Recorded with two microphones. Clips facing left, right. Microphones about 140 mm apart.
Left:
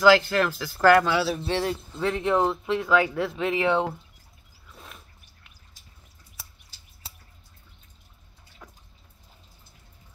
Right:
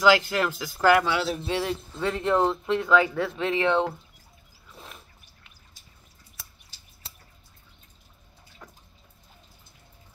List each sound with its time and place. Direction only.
0.0 s speech: 20° right (ahead or behind)
1.0 s speech: centre (ahead or behind)
1.4 s speech: 40° left (ahead or behind)
2.1 s speech: 10° left (ahead or behind)
4.6 s a sound: centre (ahead or behind)
8.6 s water: centre (ahead or behind)